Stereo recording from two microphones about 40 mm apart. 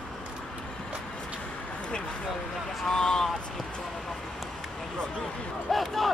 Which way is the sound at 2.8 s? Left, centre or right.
Centre.